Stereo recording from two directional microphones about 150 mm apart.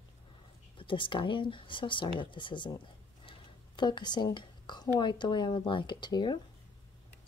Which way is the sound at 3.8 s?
30° left (ahead or behind).